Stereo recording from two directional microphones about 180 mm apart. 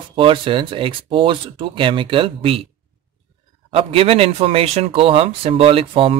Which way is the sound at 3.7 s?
30° right (ahead or behind).